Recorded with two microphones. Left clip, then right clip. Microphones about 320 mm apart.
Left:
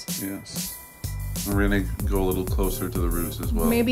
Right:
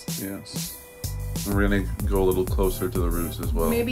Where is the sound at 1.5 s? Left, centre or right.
Centre.